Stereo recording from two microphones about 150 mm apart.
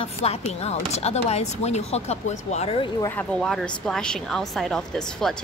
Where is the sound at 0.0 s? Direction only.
45° left (ahead or behind).